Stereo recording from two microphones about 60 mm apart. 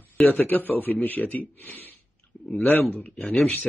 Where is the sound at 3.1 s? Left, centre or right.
Centre.